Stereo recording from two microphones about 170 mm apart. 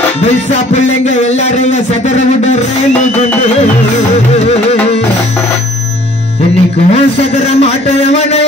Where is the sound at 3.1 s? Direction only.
45° left (ahead or behind).